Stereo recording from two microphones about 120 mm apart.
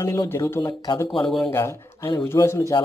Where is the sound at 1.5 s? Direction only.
20° left (ahead or behind).